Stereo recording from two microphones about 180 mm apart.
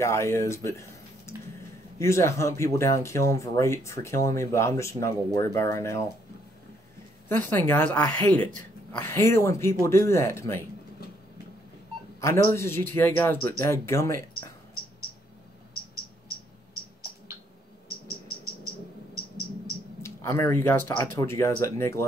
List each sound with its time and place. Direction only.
0.0 s speech: 15° left (ahead or behind)
7.2 s speech: 10° left (ahead or behind)
12.2 s speech: 15° left (ahead or behind)
20.0 s speech: 15° left (ahead or behind)